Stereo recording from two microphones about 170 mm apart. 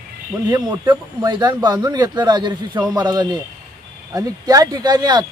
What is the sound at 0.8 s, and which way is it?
A man's voice, 25° right (ahead or behind).